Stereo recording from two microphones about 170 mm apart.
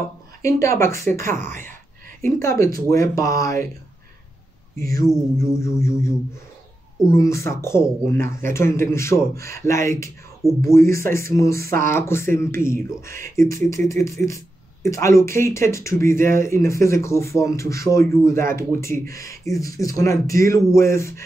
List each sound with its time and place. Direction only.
0.4 s speech: 20° left (ahead or behind)
5.0 s speech: 15° left (ahead or behind)